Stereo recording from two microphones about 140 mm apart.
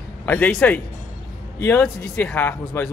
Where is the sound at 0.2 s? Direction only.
10° left (ahead or behind).